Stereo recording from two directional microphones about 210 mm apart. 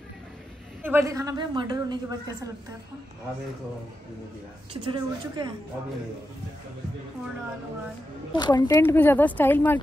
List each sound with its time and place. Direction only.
0.8 s a man's voice: 15° right (ahead or behind)
4.8 s a woman's voice: 20° right (ahead or behind)
8.3 s speech: 20° left (ahead or behind)